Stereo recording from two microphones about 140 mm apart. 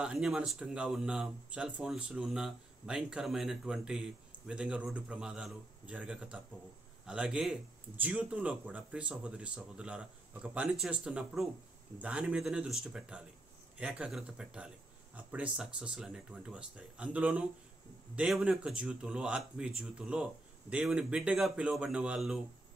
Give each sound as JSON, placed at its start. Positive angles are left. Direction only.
{"t": 0.0, "sound": "speech", "side_deg": -5}